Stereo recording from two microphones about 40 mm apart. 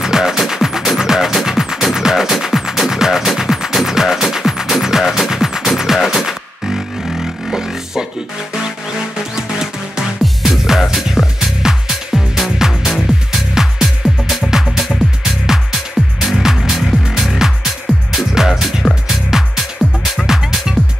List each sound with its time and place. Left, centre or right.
0.0 s music: centre
7.5 s a sound: centre
9.3 s music: centre
19.8 s music: left
20.2 s music: centre